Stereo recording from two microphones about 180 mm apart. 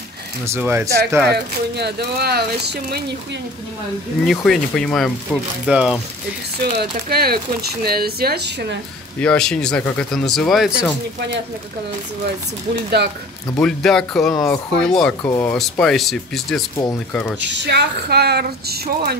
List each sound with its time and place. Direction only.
0.5 s speech: 15° right (ahead or behind)
1.3 s speech: 65° right (ahead or behind)
4.3 s speech: centre (ahead or behind)
6.6 s speech: 60° right (ahead or behind)
9.2 s speech: 5° left (ahead or behind)
13.6 s speech: 5° left (ahead or behind)
15.2 s speech: 15° left (ahead or behind)
15.8 s speech: centre (ahead or behind)
17.5 s speech: 75° right (ahead or behind)